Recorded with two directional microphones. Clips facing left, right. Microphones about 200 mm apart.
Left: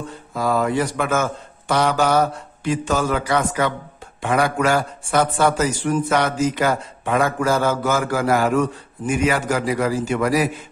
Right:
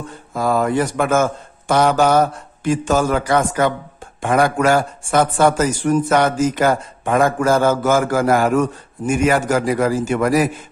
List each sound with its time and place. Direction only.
0.3 s a man's voice: 45° right (ahead or behind)